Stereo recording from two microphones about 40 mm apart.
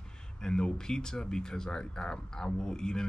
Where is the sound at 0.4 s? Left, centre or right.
Centre.